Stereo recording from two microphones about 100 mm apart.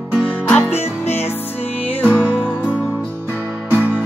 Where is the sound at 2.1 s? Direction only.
15° right (ahead or behind).